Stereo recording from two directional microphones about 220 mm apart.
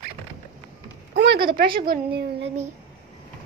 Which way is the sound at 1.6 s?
40° right (ahead or behind).